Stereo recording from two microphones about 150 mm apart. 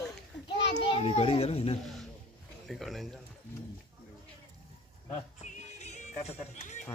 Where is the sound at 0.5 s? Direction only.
35° left (ahead or behind).